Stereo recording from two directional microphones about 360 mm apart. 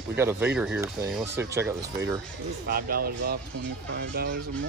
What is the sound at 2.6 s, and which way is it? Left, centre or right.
Fowl, right.